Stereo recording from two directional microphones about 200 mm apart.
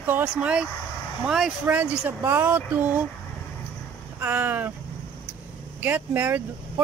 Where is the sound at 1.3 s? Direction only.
5° right (ahead or behind).